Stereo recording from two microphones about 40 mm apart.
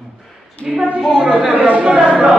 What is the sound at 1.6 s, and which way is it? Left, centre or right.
Speech, right.